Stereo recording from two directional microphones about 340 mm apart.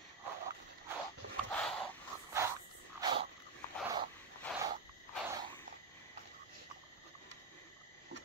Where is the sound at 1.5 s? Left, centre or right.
Centre.